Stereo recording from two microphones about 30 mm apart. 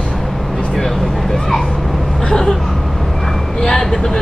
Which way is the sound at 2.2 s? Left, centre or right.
Left.